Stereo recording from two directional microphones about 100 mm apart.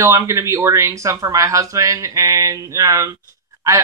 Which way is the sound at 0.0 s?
30° right (ahead or behind).